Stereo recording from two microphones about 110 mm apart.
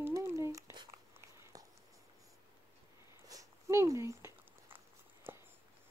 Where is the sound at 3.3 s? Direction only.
30° right (ahead or behind).